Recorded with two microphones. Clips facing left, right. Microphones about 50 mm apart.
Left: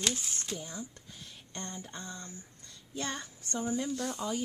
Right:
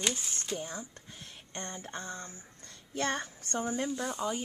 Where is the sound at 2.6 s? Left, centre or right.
Right.